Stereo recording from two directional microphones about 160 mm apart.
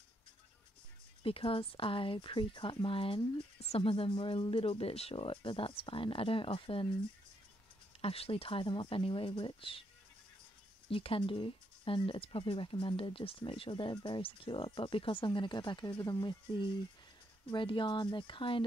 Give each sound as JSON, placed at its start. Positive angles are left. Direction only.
{"t": 1.2, "sound": "speech", "side_deg": 35}
{"t": 8.0, "sound": "speech", "side_deg": 35}
{"t": 10.9, "sound": "speech", "side_deg": 35}